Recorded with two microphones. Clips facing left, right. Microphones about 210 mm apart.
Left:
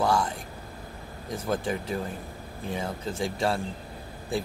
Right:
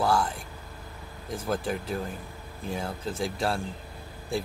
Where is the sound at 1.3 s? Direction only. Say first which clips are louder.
Left 1 dB; centre (ahead or behind).